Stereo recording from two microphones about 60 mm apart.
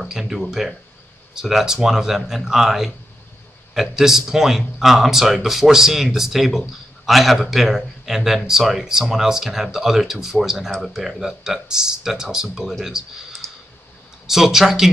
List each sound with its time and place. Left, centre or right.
0.0 s speech: centre
13.4 s clicking: right
14.2 s speech: centre